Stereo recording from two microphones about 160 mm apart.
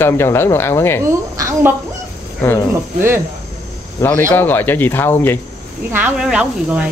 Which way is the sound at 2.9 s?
15° right (ahead or behind).